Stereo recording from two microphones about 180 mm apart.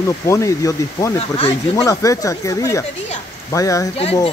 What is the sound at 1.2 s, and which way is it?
Speech, 35° left (ahead or behind).